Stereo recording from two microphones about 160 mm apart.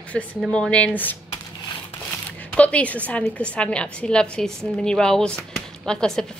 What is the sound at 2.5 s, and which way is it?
A woman's voice, 10° left (ahead or behind).